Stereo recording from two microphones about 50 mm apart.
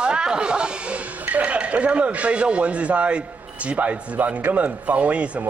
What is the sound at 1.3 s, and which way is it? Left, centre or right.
Speech, right.